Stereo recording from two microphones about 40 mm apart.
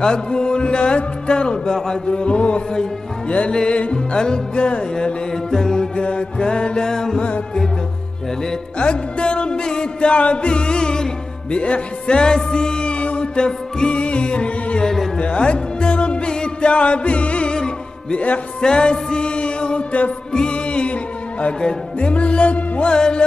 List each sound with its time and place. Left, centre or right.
0.0 s music: left
5.3 s music: centre
7.2 s music: left
8.7 s music: left
18.6 s music: left
21.5 s music: left
22.1 s music: left